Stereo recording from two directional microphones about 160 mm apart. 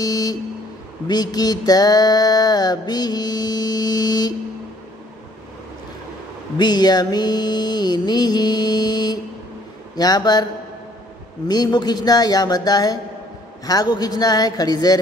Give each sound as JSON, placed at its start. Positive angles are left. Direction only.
{"t": 0.0, "sound": "mantra", "side_deg": 25}
{"t": 6.6, "sound": "mantra", "side_deg": 25}
{"t": 11.4, "sound": "mantra", "side_deg": 25}